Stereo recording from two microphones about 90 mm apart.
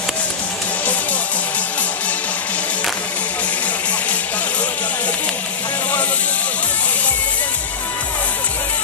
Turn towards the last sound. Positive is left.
turn(degrees=15)  # may be behind; listen again after turning